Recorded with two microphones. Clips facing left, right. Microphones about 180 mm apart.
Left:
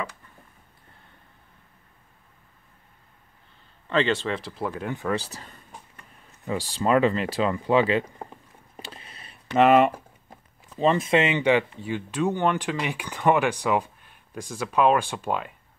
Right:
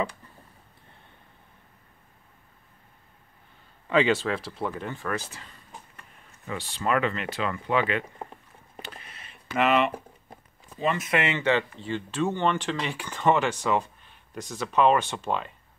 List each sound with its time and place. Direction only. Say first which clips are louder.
3.8 s speech: right 1 dB; 10° right (ahead or behind)
4.8 s speech: left 4 dB; 20° left (ahead or behind)
5.1 s speech: left 4 dB; 35° left (ahead or behind)
8.8 s a sound: even; 30° left (ahead or behind)
9.7 s speech: left 5 dB; 45° left (ahead or behind)
10.8 s speech: left 5 dB; 30° left (ahead or behind); by 15.5 s 10° left (ahead or behind)